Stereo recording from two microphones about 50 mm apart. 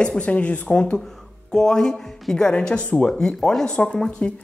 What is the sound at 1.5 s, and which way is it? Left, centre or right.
Speech, centre.